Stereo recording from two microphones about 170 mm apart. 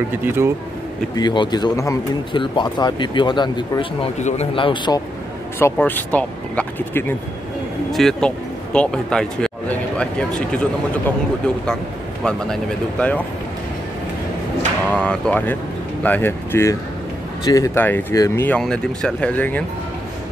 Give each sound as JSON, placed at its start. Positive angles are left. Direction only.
{"t": 0.2, "sound": "speech", "side_deg": -15}
{"t": 1.1, "sound": "speech", "side_deg": 25}
{"t": 4.2, "sound": "speech", "side_deg": 45}
{"t": 4.6, "sound": "speech", "side_deg": 30}
{"t": 5.6, "sound": "speech", "side_deg": 10}
{"t": 7.9, "sound": "speech", "side_deg": 0}
{"t": 14.9, "sound": "speech", "side_deg": 5}